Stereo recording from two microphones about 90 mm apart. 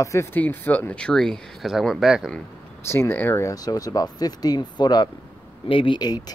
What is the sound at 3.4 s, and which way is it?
Speech, 45° left (ahead or behind).